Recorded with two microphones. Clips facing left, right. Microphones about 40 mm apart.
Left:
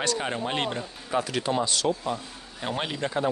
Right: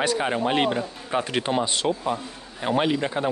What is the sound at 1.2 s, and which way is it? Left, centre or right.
Speech, right.